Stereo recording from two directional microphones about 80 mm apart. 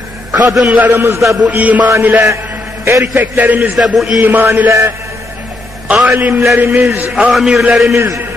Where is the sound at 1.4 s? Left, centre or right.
Centre.